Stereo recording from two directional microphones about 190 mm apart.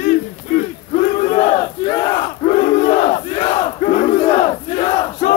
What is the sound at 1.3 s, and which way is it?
Battle cry, 35° left (ahead or behind).